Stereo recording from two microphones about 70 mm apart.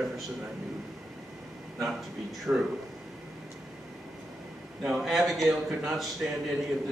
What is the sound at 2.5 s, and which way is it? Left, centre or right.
Speech, right.